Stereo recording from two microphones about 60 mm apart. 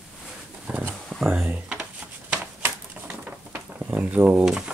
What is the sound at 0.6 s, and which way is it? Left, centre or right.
Speech, right.